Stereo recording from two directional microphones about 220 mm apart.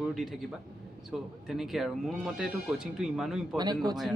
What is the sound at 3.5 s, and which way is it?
Speech, 20° right (ahead or behind).